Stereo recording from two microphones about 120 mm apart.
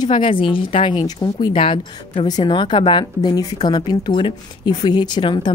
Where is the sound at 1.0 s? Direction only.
35° left (ahead or behind).